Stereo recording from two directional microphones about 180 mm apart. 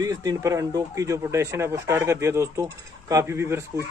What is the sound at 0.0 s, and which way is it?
Speech, 20° right (ahead or behind).